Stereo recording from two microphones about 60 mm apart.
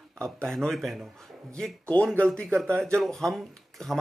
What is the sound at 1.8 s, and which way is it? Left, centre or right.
Speech, centre.